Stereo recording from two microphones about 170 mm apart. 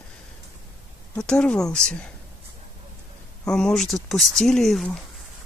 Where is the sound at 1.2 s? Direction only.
5° left (ahead or behind).